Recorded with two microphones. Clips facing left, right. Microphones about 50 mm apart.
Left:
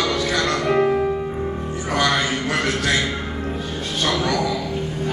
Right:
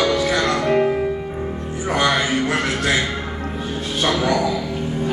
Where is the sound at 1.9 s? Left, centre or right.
Centre.